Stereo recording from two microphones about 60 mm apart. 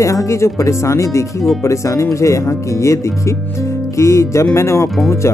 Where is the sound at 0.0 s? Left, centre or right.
Left.